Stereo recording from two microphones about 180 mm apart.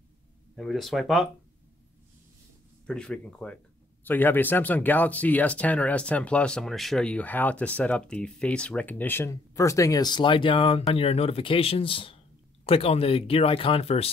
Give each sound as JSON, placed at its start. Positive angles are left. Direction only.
{"t": 0.6, "sound": "speech", "side_deg": 0}
{"t": 2.9, "sound": "speech", "side_deg": 5}